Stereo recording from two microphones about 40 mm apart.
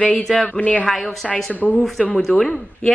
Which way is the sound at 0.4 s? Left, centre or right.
Left.